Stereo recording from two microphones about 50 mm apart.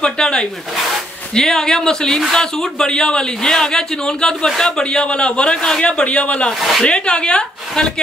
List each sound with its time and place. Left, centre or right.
0.0 s a man's voice: centre